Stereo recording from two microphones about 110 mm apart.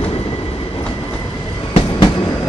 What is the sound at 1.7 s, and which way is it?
Train, 55° left (ahead or behind).